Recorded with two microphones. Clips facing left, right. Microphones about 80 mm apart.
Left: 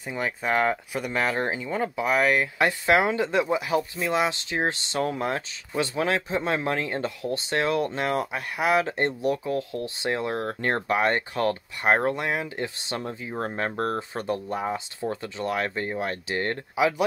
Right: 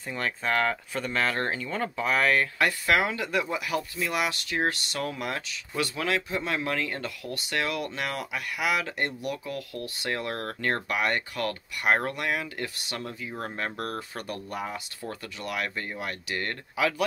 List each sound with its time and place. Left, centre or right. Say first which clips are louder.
0.1 s speech: left 2 dB; centre
2.9 s speech: left 6 dB; left